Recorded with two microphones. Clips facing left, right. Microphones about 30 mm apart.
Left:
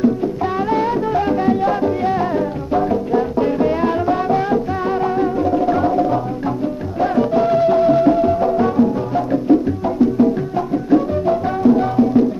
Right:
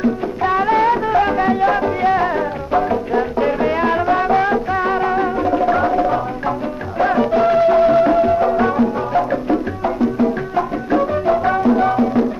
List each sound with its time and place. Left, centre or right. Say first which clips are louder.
0.0 s music: left 1 dB; centre
10.9 s music: left 1 dB; centre